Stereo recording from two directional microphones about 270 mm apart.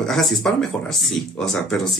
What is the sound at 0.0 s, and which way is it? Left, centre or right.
Speech, centre.